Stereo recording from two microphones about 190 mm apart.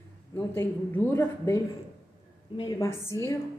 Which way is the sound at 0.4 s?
10° left (ahead or behind).